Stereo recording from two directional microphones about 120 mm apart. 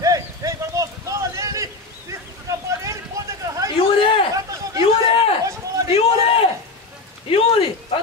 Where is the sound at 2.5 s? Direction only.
25° right (ahead or behind).